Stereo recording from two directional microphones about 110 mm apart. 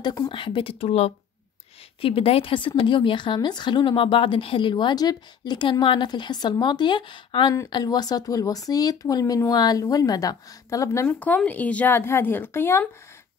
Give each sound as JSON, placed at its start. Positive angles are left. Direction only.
{"t": 0.3, "sound": "speech", "side_deg": 50}
{"t": 2.0, "sound": "speech", "side_deg": 60}
{"t": 11.1, "sound": "speech", "side_deg": 15}